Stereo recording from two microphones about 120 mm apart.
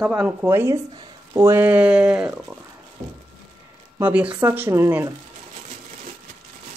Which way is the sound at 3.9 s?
15° right (ahead or behind).